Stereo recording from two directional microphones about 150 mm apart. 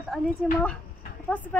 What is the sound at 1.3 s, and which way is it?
Speech, 10° left (ahead or behind).